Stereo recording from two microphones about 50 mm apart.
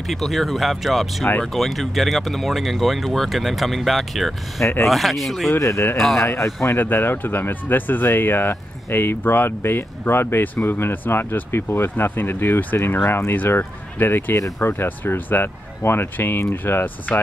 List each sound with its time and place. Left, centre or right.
0.0 s speech: centre
4.6 s speech: left
4.8 s speech: centre
6.2 s speech: left
6.8 s speech: left